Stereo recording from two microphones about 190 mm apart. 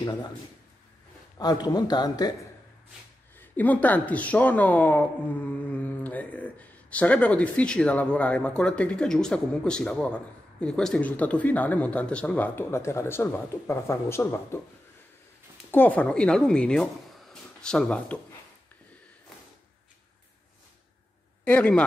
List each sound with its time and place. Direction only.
1.4 s speech: 20° left (ahead or behind)
3.3 s speech: 10° left (ahead or behind)
15.7 s speech: 10° left (ahead or behind)
21.5 s speech: 5° left (ahead or behind)